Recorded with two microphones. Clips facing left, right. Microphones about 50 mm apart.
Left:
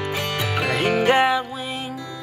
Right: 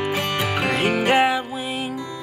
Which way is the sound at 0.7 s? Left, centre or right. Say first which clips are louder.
Left 2 dB; centre.